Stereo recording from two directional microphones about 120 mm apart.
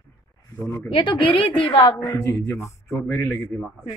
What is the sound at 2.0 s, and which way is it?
A man's voice, 25° left (ahead or behind).